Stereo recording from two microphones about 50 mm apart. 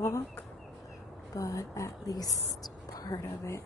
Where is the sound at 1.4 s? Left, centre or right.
Left.